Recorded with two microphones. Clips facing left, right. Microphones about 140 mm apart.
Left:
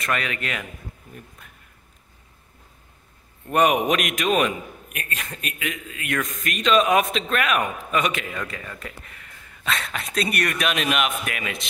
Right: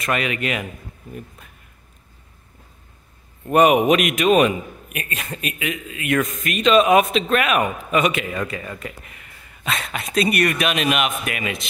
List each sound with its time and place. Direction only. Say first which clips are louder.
0.0 s speech: right 4 dB; 15° right (ahead or behind)
3.4 s speech: right 5 dB; 10° right (ahead or behind)